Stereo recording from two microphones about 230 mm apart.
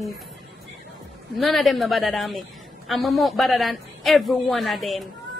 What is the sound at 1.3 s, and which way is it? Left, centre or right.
A woman's voice, centre.